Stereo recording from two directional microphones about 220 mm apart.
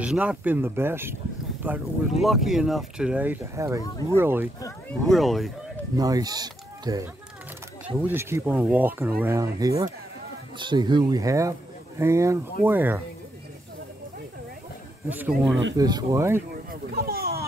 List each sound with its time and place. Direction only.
0.0 s speech: 5° right (ahead or behind)
5.0 s speech: centre (ahead or behind)
5.9 s speech: 15° right (ahead or behind)
8.1 s speech: 10° right (ahead or behind)
15.0 s speech: 5° right (ahead or behind)
16.9 s a sound: 45° right (ahead or behind)